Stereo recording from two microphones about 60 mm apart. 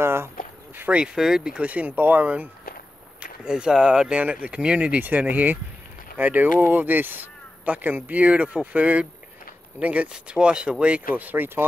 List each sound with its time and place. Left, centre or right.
0.0 s a sound: right
0.8 s speech: centre
1.1 s speech: centre; by 2.5 s right
3.2 s speech: centre; by 11.6 s right